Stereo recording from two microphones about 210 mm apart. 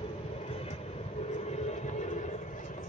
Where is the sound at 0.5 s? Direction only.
30° left (ahead or behind).